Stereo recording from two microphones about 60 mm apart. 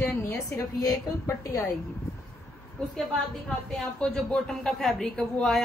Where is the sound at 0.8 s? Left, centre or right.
Left.